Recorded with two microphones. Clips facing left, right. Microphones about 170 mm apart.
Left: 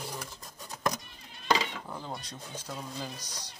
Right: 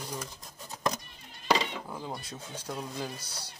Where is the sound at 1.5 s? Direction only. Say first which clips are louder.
Right 1 dB; 5° right (ahead or behind).